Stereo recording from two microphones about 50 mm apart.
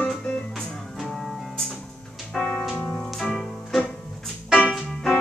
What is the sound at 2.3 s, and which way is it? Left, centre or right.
Music, centre.